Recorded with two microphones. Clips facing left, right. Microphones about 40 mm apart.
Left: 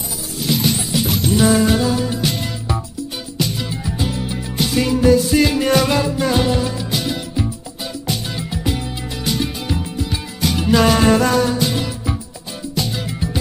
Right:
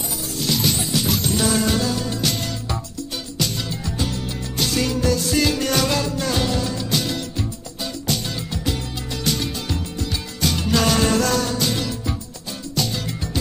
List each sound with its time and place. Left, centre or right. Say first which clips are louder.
0.5 s music: left 3 dB; centre